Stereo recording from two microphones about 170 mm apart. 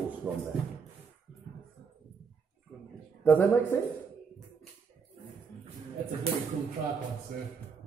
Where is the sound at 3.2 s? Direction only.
10° left (ahead or behind).